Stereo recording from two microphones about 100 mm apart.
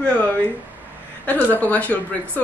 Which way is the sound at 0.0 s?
10° left (ahead or behind).